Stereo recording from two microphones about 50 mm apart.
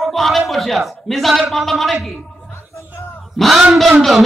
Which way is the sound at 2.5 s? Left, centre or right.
Left.